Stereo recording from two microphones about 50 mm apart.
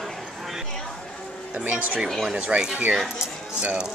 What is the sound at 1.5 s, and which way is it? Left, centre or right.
Speech, right.